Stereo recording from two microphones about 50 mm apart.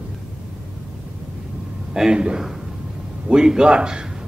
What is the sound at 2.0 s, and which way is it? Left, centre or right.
Speech, centre.